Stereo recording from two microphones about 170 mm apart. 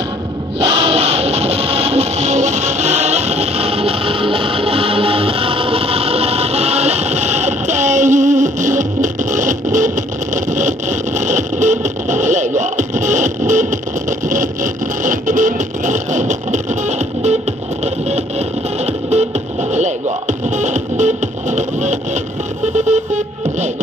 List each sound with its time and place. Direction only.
0.7 s music: 35° right (ahead or behind)
17.8 s vehicle: 40° right (ahead or behind)
18.9 s music: 40° right (ahead or behind)
20.2 s music: 45° right (ahead or behind)
22.8 s a sound: 45° right (ahead or behind)